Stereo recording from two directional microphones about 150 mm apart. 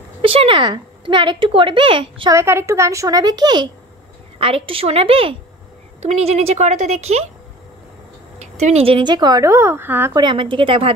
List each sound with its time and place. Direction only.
0.2 s a woman's voice: 35° right (ahead or behind)
2.3 s a woman's voice: 15° right (ahead or behind)
4.4 s a woman's voice: 40° right (ahead or behind)
8.4 s a woman's voice: 50° right (ahead or behind); by 10.1 s 15° right (ahead or behind)
10.1 s a woman's voice: 30° right (ahead or behind)